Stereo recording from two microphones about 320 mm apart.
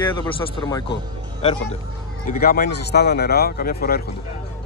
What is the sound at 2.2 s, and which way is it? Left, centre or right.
Speech, left.